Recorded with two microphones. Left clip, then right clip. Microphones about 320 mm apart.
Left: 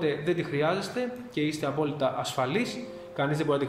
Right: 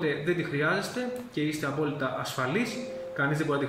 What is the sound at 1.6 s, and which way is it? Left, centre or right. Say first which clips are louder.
Speech: left 2 dB; centre.